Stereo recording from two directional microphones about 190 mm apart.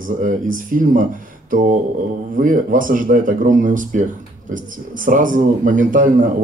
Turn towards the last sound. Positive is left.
turn(degrees=-45)  # may be behind; listen again after turning